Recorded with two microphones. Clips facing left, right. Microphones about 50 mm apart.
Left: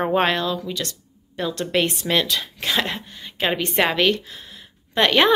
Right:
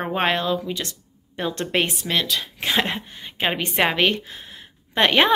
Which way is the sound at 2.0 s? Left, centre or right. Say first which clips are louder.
Left 2 dB; centre.